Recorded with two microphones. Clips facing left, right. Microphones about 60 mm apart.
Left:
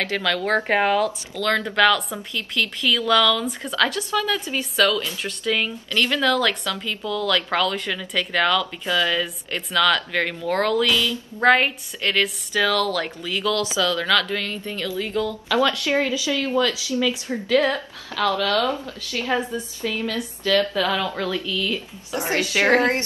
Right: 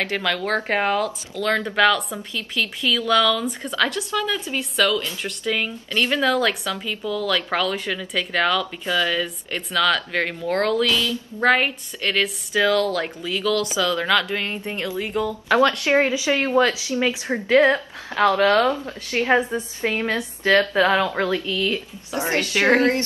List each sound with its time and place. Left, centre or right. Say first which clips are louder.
0.0 s speech: even; centre
0.4 s speech: left 5 dB; centre
5.9 s speech: even; centre
13.7 s speech: even; centre
15.4 s a woman's voice: right 4 dB; right
22.4 s a woman's voice: left 2 dB; centre
22.8 s speech: right 1 dB; left